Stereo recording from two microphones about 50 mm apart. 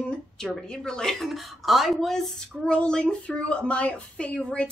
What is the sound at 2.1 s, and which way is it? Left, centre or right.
Speech, centre.